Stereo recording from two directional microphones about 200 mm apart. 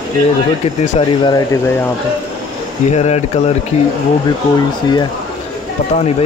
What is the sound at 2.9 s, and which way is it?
Speech, 35° left (ahead or behind).